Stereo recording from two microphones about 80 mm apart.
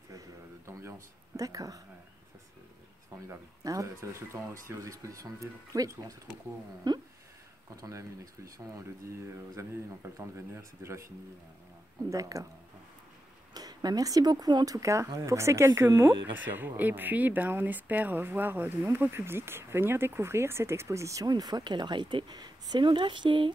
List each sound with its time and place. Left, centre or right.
0.1 s a sound: right
3.3 s speech: right
6.8 s a sound: right
7.7 s speech: right
12.1 s speech: right
13.5 s speech: right
16.3 s speech: right
21.3 s speech: right